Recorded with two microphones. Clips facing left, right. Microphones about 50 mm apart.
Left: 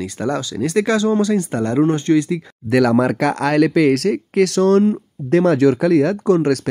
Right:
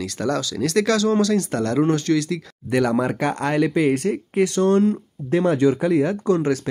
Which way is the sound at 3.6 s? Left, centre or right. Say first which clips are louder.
Left 4 dB; left.